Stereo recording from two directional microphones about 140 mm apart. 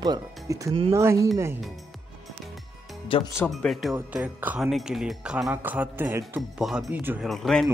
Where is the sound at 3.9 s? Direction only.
10° right (ahead or behind).